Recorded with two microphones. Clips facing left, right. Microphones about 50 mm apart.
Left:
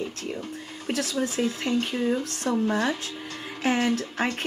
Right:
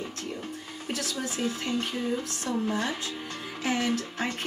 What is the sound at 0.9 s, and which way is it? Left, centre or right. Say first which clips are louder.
A woman's voice: left 6 dB; left.